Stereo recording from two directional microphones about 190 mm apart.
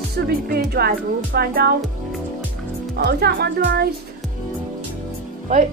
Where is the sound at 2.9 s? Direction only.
60° right (ahead or behind).